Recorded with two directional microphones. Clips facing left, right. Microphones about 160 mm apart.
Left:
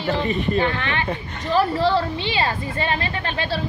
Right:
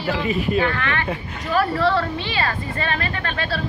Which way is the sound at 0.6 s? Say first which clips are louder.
Even; 25° left (ahead or behind).